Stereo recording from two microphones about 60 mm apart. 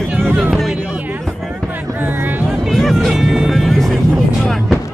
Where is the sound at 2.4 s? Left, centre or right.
Centre.